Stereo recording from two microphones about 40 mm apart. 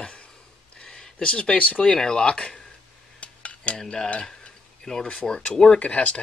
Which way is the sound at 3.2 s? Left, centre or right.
Left.